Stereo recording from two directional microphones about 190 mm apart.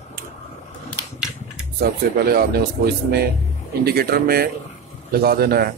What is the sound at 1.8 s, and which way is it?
Speech, 55° right (ahead or behind).